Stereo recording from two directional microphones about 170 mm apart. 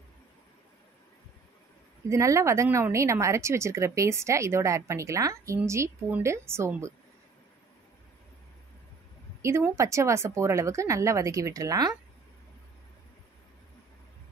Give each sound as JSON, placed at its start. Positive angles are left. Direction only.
{"t": 2.0, "sound": "speech", "side_deg": -15}
{"t": 9.4, "sound": "speech", "side_deg": -15}